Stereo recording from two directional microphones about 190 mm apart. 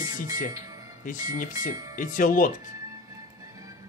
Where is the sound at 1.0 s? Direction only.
45° left (ahead or behind).